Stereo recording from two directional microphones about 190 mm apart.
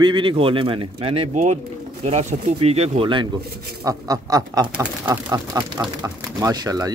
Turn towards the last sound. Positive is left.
turn(degrees=-20)  # may be behind; listen again after turning